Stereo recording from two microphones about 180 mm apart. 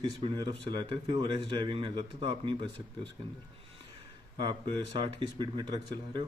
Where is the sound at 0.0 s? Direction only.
25° right (ahead or behind).